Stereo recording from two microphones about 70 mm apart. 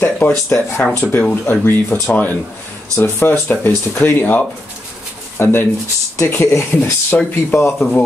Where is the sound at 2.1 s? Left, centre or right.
Left.